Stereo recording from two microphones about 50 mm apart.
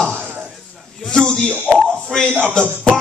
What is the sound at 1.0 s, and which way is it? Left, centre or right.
A man's voice, centre.